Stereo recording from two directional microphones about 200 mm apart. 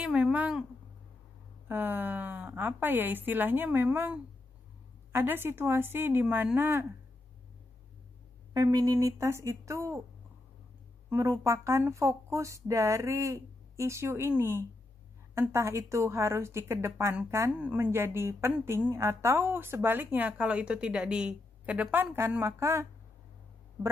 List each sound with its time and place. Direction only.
0.0 s a sound: 5° right (ahead or behind)
1.7 s speech: 10° right (ahead or behind)
8.5 s speech: 15° right (ahead or behind)
11.1 s speech: 15° right (ahead or behind)